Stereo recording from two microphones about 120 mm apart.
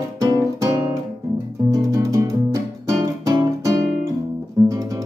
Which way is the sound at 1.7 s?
30° right (ahead or behind).